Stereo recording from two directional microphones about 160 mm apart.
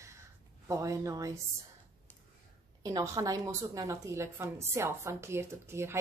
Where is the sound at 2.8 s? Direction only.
20° right (ahead or behind).